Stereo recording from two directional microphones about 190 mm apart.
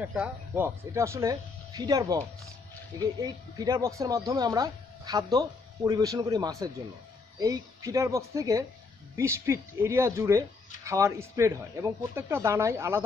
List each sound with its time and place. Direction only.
0.0 s speech: 5° right (ahead or behind)